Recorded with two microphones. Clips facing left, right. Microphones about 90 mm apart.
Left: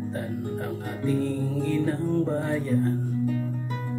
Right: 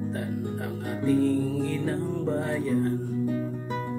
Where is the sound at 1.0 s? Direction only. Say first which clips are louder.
Right 3 dB; centre (ahead or behind).